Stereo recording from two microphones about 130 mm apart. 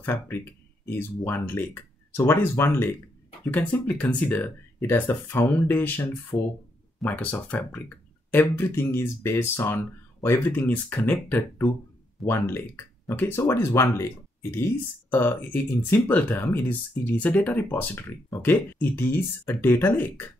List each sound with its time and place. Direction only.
0.0 s speech: 15° left (ahead or behind)